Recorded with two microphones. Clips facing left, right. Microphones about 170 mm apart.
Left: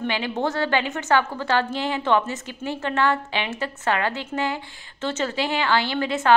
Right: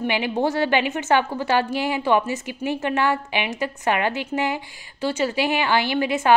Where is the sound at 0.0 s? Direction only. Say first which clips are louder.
Right 3 dB; 15° right (ahead or behind).